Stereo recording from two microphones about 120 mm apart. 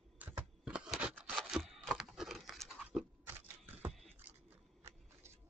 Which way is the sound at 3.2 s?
15° right (ahead or behind).